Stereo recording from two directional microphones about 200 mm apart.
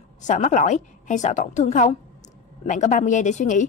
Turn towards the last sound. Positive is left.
turn(degrees=40)  # may be behind; listen again after turning